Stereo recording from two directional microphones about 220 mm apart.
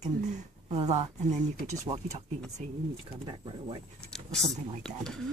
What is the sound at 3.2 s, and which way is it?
Speech, 25° right (ahead or behind).